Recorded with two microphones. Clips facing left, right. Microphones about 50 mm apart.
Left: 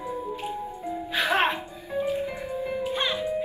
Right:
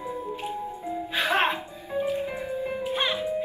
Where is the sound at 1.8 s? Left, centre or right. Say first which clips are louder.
Even; centre.